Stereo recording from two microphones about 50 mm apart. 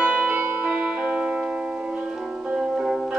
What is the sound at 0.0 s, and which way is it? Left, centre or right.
Music, centre.